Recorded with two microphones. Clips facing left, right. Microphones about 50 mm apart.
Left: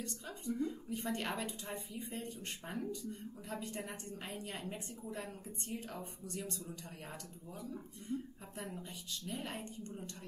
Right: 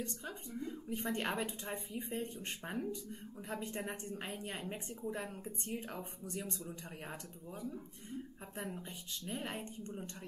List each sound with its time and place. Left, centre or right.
0.0 s a woman's voice: right
9.3 s a woman's voice: right